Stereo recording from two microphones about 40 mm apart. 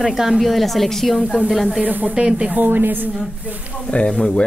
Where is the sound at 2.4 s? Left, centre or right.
Right.